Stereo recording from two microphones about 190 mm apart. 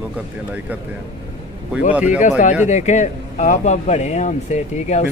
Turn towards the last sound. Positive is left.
turn(degrees=40)  # may be behind; listen again after turning